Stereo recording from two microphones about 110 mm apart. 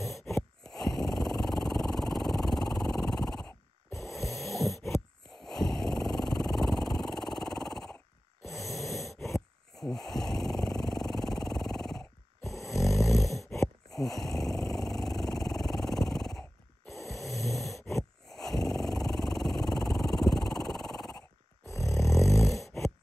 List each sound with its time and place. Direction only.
0.0 s a sound: centre (ahead or behind)
3.4 s a sound: 25° left (ahead or behind)
4.1 s snoring: centre (ahead or behind)
5.4 s a sound: 5° left (ahead or behind)
8.6 s gasp: centre (ahead or behind)
9.8 s snoring: 5° left (ahead or behind)
13.2 s snoring: centre (ahead or behind)
18.3 s dog: 5° left (ahead or behind)
21.6 s snoring: 25° left (ahead or behind)
22.4 s dog: centre (ahead or behind)